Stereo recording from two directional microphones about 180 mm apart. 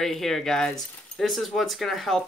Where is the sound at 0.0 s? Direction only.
Centre (ahead or behind).